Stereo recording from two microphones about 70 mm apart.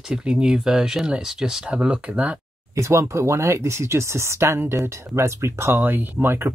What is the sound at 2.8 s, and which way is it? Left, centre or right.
Speech, right.